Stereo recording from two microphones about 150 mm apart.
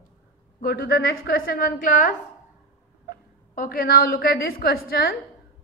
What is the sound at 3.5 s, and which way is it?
A woman's voice, 70° left (ahead or behind).